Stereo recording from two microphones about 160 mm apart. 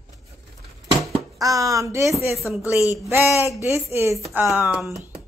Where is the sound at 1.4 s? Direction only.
20° right (ahead or behind).